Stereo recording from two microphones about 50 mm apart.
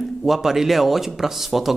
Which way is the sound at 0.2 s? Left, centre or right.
Centre.